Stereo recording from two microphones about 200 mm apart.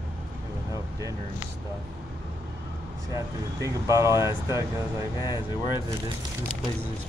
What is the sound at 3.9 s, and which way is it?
Speech, 15° right (ahead or behind).